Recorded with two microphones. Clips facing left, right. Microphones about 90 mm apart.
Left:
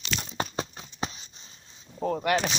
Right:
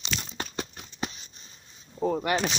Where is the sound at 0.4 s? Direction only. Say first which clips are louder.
Left 4 dB; 30° left (ahead or behind).